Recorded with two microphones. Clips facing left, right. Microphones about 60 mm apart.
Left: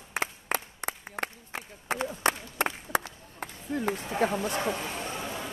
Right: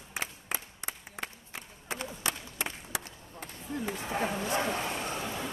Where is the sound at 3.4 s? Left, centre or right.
Left.